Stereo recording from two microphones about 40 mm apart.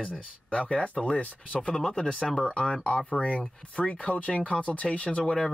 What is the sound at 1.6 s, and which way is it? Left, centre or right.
Speech, left.